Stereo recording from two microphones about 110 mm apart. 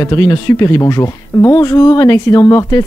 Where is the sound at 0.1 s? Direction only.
30° left (ahead or behind).